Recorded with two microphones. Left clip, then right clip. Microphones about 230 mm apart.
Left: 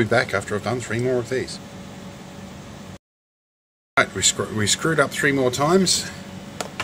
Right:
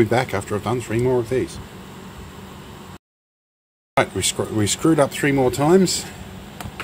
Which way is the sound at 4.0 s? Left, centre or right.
Right.